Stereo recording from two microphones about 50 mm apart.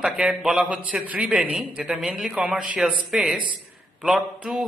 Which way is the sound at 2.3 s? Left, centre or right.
Right.